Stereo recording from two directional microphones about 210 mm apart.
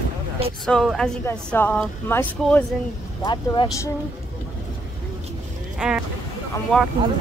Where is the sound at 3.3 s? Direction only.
20° left (ahead or behind).